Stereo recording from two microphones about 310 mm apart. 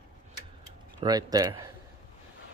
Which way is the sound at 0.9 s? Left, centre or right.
Centre.